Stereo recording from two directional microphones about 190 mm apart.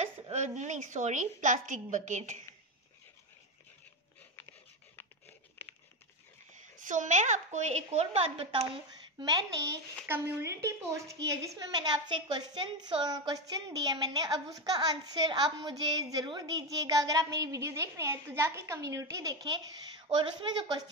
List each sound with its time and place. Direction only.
0.0 s a woman's voice: 40° right (ahead or behind)
6.8 s a woman's voice: 40° right (ahead or behind)
9.2 s a woman's voice: 20° right (ahead or behind)